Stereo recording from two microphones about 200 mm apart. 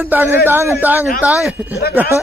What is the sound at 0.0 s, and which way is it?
A man's voice, 10° right (ahead or behind).